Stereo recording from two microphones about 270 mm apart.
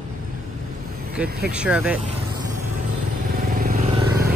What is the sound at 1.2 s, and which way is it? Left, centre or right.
Speech, centre.